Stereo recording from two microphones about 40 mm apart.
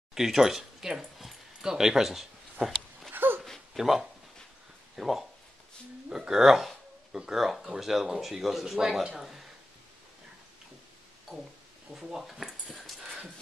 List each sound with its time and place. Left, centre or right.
0.1 s speech: centre
3.1 s a sound: right
3.7 s speech: centre
11.9 s speech: centre